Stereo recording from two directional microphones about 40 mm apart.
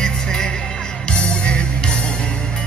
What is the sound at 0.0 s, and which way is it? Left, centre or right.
Music, centre.